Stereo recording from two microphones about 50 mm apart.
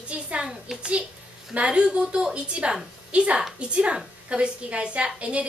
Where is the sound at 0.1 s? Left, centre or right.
Right.